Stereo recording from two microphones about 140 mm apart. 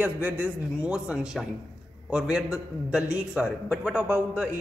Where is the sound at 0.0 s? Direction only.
10° right (ahead or behind).